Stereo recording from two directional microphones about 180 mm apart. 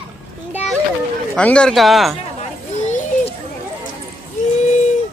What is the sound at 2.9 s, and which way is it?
Children playing, 40° left (ahead or behind).